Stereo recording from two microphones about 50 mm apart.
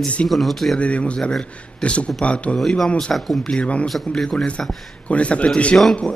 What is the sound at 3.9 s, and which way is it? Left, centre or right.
Speech, centre.